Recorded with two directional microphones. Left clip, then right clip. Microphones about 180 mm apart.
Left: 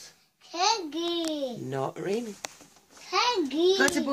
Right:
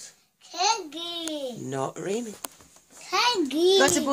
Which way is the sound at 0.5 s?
Centre (ahead or behind).